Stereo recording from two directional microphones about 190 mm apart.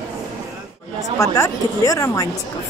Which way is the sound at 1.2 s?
15° left (ahead or behind).